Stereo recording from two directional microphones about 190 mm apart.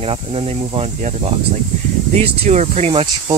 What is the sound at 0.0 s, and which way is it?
Speech, 30° right (ahead or behind).